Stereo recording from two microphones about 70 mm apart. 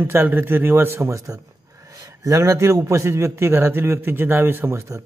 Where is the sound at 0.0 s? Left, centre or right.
Right.